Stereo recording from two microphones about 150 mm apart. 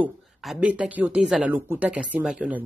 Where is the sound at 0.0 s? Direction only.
10° right (ahead or behind).